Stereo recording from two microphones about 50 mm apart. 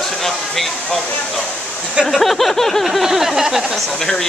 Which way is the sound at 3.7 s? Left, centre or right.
Centre.